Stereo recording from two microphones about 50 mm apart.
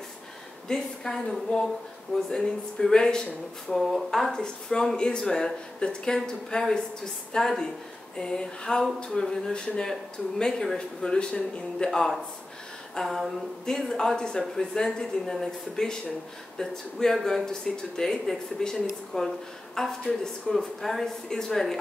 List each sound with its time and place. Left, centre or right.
0.7 s speech: centre
1.5 s speech: left
2.3 s speech: centre
3.7 s speech: centre; by 11.9 s left
11.9 s speech: centre
12.9 s a sound: centre
13.7 s speech: centre